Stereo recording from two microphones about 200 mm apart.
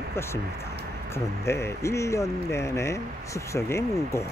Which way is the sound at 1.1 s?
15° left (ahead or behind).